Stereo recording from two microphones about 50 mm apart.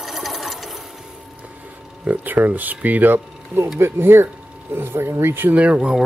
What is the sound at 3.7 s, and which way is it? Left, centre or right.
Speech, right.